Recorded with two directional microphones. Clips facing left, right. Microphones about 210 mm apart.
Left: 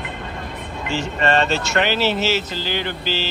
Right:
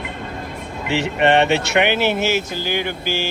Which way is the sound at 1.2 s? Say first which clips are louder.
Right 4 dB; 20° right (ahead or behind).